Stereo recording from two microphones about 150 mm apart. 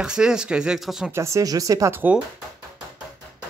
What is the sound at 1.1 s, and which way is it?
Speech, 20° right (ahead or behind).